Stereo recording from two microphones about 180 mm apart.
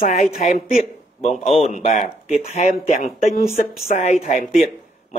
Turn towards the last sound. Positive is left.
turn(degrees=40)  # may be behind; listen again after turning